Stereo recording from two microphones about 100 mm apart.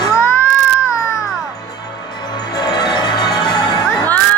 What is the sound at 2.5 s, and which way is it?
Music, 45° left (ahead or behind).